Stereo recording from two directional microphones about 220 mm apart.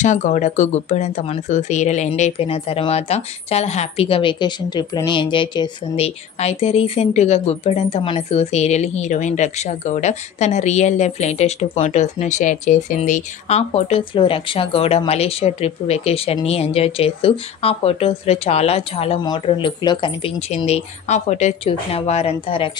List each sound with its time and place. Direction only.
0.0 s speech: 35° left (ahead or behind)